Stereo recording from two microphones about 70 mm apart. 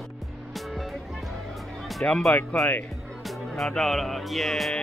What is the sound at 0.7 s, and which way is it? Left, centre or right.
Music, centre.